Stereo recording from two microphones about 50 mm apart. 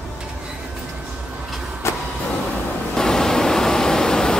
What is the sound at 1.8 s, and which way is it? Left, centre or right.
Vehicle, left.